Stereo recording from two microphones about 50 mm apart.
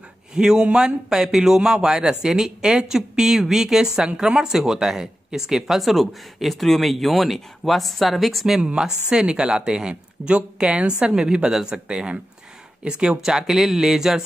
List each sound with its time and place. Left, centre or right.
0.3 s a man's voice: centre